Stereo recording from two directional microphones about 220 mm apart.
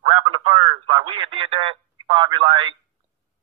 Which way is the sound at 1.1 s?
25° right (ahead or behind).